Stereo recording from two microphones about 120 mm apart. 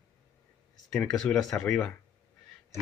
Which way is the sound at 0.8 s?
5° left (ahead or behind).